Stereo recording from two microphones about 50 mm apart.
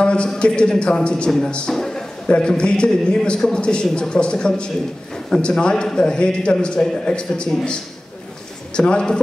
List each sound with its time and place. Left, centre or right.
0.0 s a sound: left
0.4 s a man's voice: centre
2.2 s a man's voice: centre